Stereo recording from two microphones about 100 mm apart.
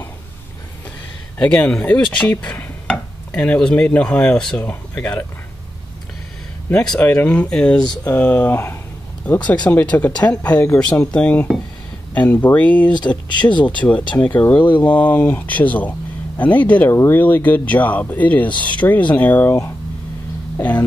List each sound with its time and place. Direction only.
1.7 s speech: 15° left (ahead or behind)
6.7 s speech: 10° left (ahead or behind)
7.8 s speech: 40° left (ahead or behind)
8.1 s speech: 20° left (ahead or behind)
12.9 s speech: 50° left (ahead or behind)
14.1 s speech: 20° left (ahead or behind)